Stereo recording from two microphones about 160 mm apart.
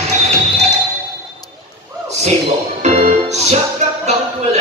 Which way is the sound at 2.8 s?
45° right (ahead or behind).